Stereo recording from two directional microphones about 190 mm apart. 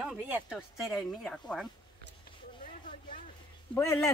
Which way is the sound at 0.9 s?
5° left (ahead or behind).